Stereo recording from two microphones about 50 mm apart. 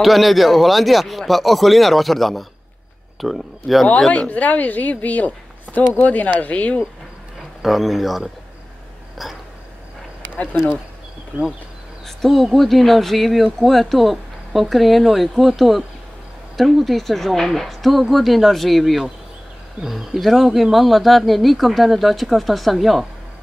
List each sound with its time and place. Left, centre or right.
0.0 s speech: centre
4.1 s a woman's voice: left
7.6 s speech: centre
12.2 s speech: centre